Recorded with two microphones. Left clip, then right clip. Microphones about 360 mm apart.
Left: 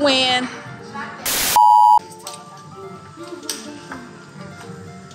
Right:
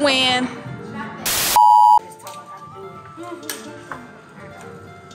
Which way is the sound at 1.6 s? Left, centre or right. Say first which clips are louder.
Even; centre.